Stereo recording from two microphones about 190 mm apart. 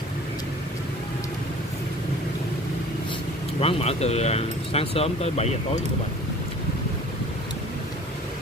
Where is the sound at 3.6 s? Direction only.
30° left (ahead or behind).